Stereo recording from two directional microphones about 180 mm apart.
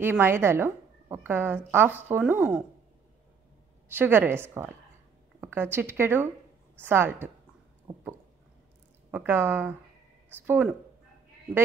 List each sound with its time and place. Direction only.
0.0 s a woman's voice: 10° right (ahead or behind)
3.9 s a woman's voice: 10° right (ahead or behind)
7.9 s a sound: 20° right (ahead or behind)
9.1 s a woman's voice: 10° right (ahead or behind)